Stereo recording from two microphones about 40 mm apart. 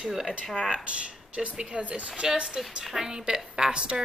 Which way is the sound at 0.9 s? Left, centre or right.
Right.